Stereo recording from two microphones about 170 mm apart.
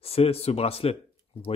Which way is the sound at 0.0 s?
35° left (ahead or behind).